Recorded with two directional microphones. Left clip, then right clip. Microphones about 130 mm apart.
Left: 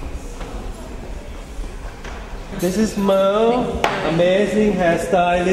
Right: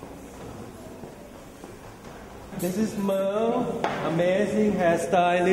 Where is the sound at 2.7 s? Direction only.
40° left (ahead or behind).